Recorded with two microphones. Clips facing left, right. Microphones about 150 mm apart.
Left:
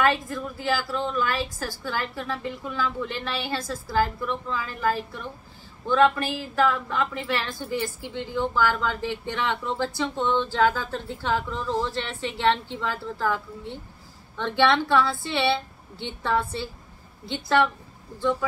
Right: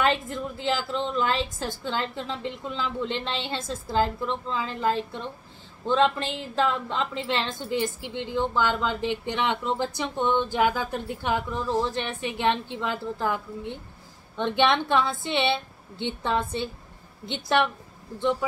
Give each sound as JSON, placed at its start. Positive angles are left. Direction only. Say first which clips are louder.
{"t": 0.0, "sound": "a woman's voice", "louder": "left 1 dB", "side_deg": -20}